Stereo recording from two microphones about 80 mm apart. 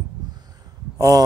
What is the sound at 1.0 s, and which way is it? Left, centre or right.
Speech, right.